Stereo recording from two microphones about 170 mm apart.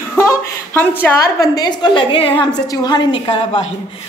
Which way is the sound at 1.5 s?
25° left (ahead or behind).